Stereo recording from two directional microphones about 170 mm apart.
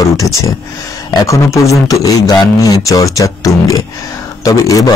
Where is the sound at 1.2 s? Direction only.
20° left (ahead or behind).